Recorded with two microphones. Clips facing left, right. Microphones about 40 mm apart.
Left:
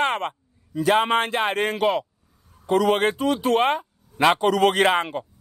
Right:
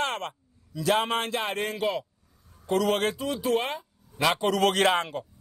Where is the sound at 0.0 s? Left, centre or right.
Left.